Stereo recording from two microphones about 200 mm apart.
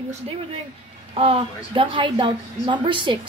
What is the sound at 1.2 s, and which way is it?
A woman's voice, 25° right (ahead or behind).